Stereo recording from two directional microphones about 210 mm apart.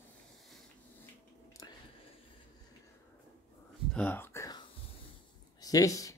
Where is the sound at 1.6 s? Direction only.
15° left (ahead or behind).